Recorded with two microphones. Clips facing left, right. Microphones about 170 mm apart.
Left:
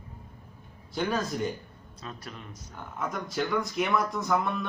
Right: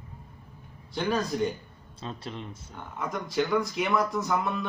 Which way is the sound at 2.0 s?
25° right (ahead or behind).